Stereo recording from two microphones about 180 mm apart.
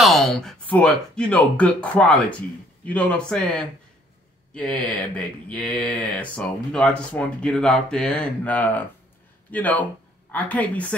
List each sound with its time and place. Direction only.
0.0 s speech: centre (ahead or behind)